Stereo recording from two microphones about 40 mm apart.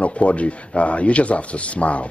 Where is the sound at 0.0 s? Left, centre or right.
Left.